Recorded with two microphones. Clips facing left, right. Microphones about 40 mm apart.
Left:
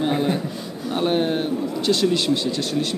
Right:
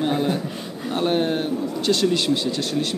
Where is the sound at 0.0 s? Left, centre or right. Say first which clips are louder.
Left 1 dB; centre.